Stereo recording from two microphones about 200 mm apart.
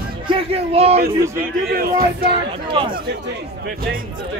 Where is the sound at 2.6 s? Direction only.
25° right (ahead or behind).